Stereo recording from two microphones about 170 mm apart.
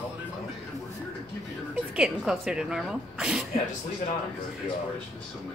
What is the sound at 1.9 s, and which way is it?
A woman's voice, 5° right (ahead or behind).